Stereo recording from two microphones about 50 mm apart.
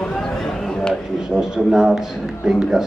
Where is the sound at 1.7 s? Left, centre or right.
Centre.